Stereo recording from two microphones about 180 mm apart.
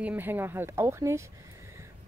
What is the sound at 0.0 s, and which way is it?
Speech, 10° right (ahead or behind).